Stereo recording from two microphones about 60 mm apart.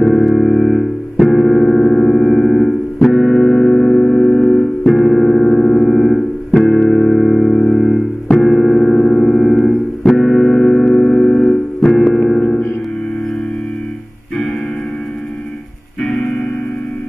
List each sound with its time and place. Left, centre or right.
0.0 s music: centre
1.3 s keyboard: centre
3.1 s music: centre
12.3 s music: centre
16.0 s music: centre